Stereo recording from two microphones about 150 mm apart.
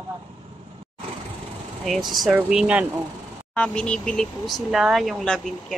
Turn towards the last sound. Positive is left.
turn(degrees=0)  # may be behind; listen again after turning